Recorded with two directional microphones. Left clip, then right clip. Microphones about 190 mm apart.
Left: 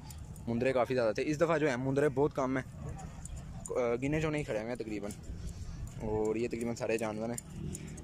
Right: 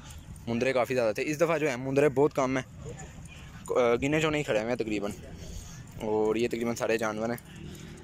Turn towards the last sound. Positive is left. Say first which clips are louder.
# right 5 dB
turn(degrees=0)  # may be behind; listen again after turning